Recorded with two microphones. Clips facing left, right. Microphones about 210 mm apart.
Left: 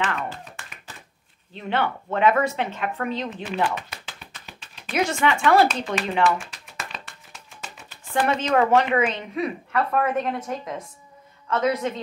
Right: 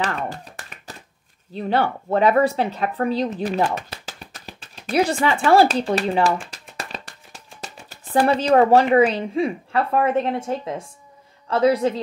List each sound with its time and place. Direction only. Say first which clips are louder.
0.0 s speech: right 2 dB; 40° right (ahead or behind)
1.5 s speech: right 4 dB; 35° right (ahead or behind)